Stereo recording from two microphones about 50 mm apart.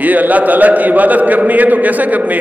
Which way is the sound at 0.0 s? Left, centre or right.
Right.